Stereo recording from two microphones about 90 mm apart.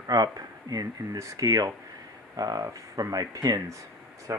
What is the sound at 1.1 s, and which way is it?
Speech, 35° right (ahead or behind).